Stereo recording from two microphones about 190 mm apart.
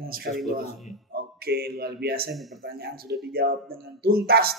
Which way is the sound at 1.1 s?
55° right (ahead or behind).